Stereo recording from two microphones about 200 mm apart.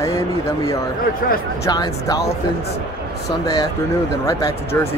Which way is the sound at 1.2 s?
45° left (ahead or behind).